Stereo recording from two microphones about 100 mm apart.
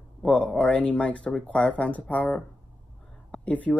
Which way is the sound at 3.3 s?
15° left (ahead or behind).